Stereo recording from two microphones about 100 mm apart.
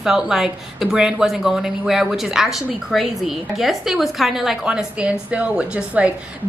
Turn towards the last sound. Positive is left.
turn(degrees=-10)  # may be behind; listen again after turning